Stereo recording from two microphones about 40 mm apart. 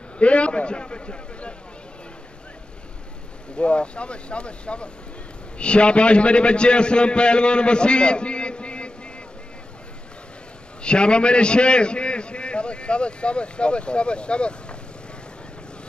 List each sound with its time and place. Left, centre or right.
0.2 s a man's voice: left
3.5 s a man's voice: left
10.8 s a man's voice: left